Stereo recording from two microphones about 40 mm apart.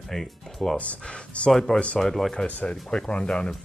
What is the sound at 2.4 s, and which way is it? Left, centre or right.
Speech, left.